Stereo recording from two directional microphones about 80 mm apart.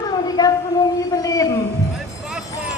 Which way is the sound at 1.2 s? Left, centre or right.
Left.